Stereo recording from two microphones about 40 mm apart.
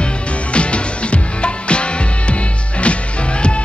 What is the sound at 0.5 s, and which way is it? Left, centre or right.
Music, left.